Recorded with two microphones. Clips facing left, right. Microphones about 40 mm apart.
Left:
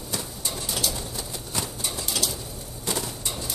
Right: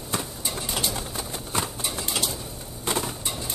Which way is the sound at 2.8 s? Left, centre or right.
Right.